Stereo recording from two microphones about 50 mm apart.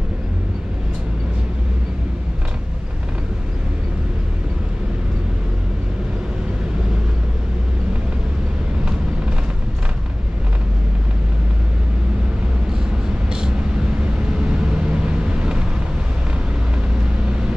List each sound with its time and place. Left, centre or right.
13.3 s vehicle: centre